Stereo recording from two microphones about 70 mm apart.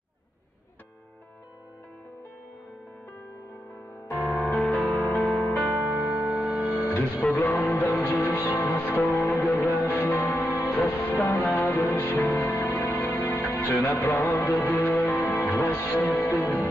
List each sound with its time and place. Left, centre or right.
4.1 s music: centre
4.9 s music: left
5.2 s music: centre
6.0 s music: right
6.9 s music: left
15.4 s speech: left